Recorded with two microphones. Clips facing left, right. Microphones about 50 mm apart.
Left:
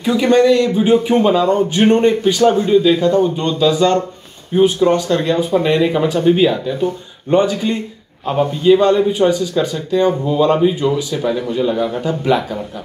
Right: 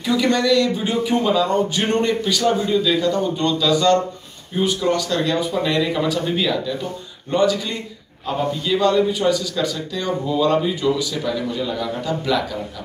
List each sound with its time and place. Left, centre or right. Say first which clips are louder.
0.0 s speech: left 6 dB; left